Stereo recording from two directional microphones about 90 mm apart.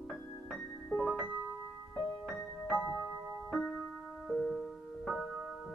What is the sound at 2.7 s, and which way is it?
Music, 10° right (ahead or behind).